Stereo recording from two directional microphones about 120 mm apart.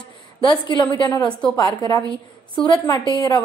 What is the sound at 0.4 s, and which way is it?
Speech, 40° left (ahead or behind).